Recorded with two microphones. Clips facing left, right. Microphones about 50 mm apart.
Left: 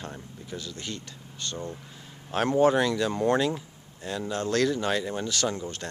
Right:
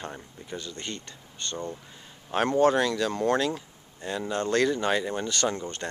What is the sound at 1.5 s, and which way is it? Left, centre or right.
Speech, centre.